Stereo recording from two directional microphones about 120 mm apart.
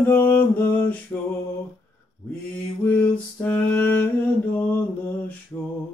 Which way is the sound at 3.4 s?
15° left (ahead or behind).